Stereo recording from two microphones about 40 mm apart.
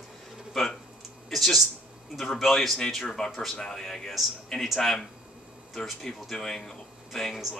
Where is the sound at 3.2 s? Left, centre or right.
Centre.